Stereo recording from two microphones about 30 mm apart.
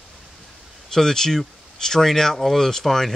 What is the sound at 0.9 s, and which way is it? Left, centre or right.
Speech, centre.